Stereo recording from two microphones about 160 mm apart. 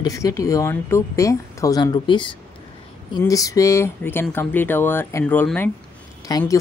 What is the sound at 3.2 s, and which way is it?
Speech, 20° left (ahead or behind).